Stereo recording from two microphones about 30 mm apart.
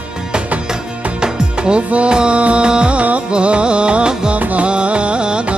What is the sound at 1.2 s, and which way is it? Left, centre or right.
Music, right.